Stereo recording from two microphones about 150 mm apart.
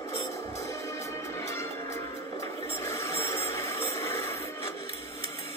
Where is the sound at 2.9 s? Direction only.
20° left (ahead or behind).